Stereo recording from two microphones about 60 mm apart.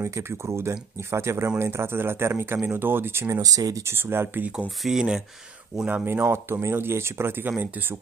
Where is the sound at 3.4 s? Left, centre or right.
Right.